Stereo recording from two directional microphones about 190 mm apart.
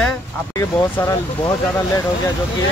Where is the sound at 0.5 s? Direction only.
15° left (ahead or behind).